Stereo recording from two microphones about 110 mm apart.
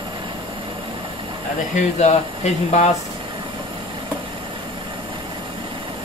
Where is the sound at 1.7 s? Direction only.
90° left.